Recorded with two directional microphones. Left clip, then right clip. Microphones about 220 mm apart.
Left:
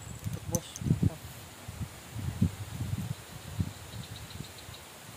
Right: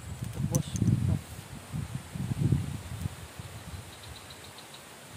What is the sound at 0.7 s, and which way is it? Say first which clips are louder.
Rustling leaves: right 7 dB; 15° right (ahead or behind).